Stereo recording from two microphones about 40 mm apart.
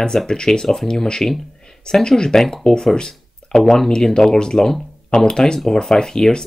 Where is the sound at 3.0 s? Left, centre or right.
Centre.